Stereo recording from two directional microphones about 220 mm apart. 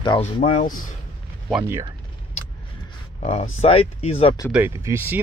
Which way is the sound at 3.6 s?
25° left (ahead or behind).